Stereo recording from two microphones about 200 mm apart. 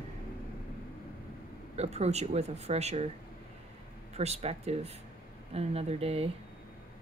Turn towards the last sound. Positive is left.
turn(degrees=-30)  # may be behind; listen again after turning